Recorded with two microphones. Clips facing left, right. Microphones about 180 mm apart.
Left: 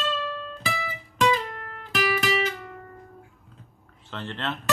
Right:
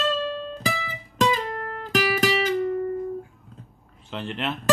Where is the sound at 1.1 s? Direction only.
40° right (ahead or behind).